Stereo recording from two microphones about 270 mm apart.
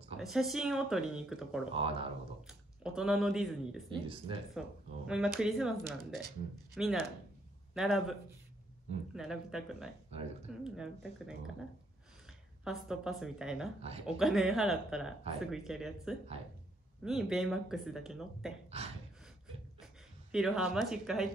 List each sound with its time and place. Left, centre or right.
0.2 s speech: centre
1.7 s speech: centre
2.4 s speech: centre
3.9 s speech: centre
4.6 s speech: centre
12.6 s speech: centre
13.7 s speech: right
14.0 s speech: centre
20.2 s speech: centre